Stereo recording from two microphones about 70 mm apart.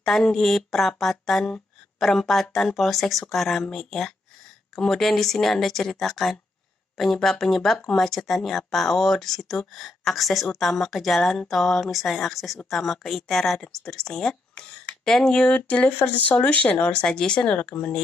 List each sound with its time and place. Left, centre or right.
0.0 s speech: centre